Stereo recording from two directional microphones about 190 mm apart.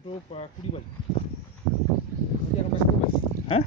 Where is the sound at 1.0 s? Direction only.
25° left (ahead or behind).